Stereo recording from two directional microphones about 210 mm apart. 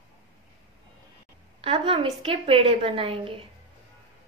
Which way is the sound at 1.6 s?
25° right (ahead or behind).